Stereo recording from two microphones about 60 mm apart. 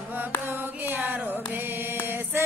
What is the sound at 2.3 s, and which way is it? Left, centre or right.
Music, right.